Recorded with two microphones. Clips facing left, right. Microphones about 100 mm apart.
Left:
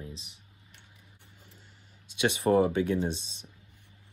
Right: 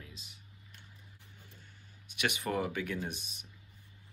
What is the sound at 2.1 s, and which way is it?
Speech, 25° left (ahead or behind).